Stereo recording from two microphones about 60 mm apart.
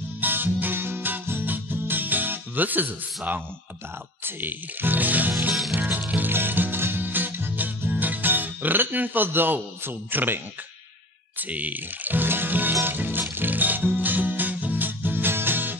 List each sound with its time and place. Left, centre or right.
0.2 s music: right
4.2 s speech: right
5.5 s music: centre
5.8 s music: right
11.3 s music: right